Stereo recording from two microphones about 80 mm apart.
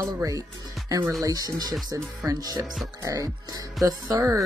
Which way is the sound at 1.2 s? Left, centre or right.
Right.